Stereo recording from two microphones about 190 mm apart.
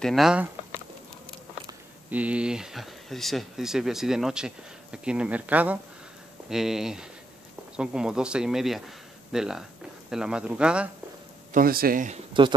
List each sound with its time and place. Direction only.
0.0 s speech: centre (ahead or behind)
2.0 s speech: 5° right (ahead or behind)
11.5 s speech: 50° right (ahead or behind)